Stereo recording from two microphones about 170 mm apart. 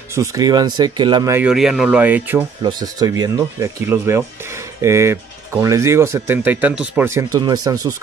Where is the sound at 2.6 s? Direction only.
25° right (ahead or behind).